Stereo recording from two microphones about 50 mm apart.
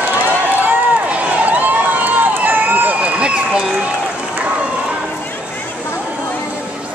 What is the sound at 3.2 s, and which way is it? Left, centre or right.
Run, centre.